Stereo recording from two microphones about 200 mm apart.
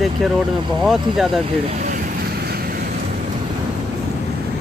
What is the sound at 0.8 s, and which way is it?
Speech, centre (ahead or behind).